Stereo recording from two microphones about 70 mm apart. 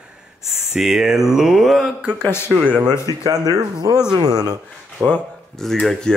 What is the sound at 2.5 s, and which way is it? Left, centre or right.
Speech, right.